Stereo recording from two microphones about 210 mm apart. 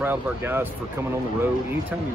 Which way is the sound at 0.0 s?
10° right (ahead or behind).